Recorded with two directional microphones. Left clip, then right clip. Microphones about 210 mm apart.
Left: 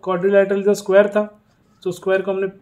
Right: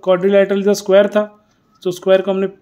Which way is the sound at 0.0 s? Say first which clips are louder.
Right 3 dB; 40° right (ahead or behind).